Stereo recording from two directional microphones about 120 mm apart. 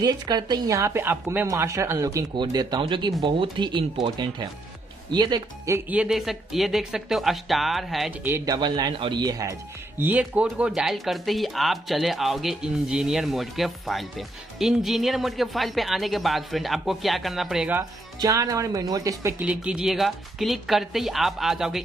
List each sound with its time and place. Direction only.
0.0 s speech: 35° right (ahead or behind)
5.9 s speech: 5° right (ahead or behind)
8.2 s speech: 20° right (ahead or behind)
8.5 s speech: 35° right (ahead or behind)
9.9 s speech: 15° right (ahead or behind)
18.2 s speech: 30° right (ahead or behind)
19.3 s speech: 10° right (ahead or behind)